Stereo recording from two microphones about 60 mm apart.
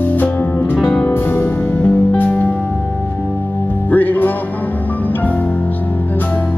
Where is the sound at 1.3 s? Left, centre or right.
Left.